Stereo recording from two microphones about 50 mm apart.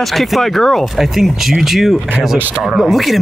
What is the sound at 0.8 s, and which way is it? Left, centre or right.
Speech, centre.